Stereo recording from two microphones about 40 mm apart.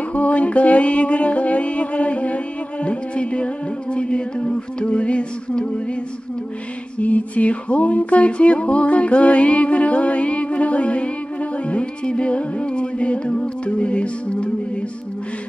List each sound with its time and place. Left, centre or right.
0.1 s music: left
7.0 s music: left